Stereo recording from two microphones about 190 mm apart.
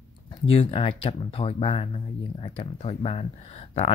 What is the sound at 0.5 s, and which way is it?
Speech, 30° left (ahead or behind).